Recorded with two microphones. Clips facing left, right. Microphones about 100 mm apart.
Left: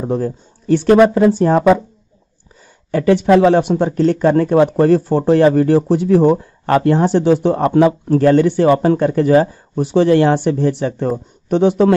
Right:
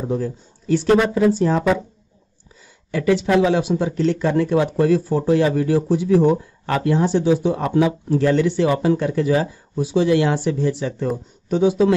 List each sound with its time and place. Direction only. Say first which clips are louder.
0.0 s speech: left 4 dB; 50° left (ahead or behind)
2.9 s speech: left 6 dB; 50° left (ahead or behind)